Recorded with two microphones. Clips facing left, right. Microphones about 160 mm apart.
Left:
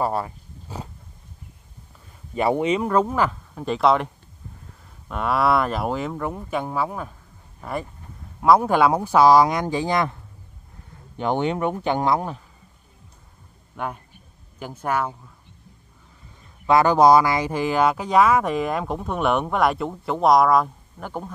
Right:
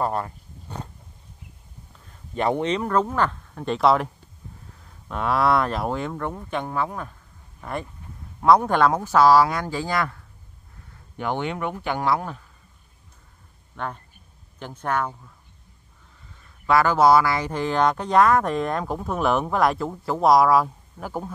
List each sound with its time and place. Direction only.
0.0 s dog: 5° left (ahead or behind)
2.3 s speech: 5° left (ahead or behind)
8.4 s speech: 5° left (ahead or behind)
13.7 s speech: 10° left (ahead or behind)
16.6 s speech: 20° left (ahead or behind); by 21.3 s 5° right (ahead or behind)